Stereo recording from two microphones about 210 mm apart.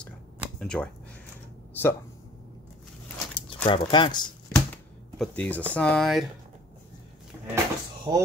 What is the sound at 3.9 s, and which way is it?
Speech, 20° left (ahead or behind).